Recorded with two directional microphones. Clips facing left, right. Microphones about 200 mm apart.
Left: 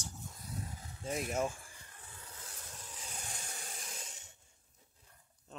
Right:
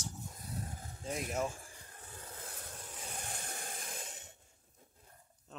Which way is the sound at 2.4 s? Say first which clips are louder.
Right 2 dB; 55° right (ahead or behind).